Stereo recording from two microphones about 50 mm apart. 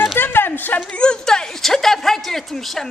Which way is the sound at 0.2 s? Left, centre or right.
Left.